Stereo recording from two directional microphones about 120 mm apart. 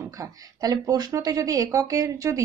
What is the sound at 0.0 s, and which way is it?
Speech, 25° right (ahead or behind).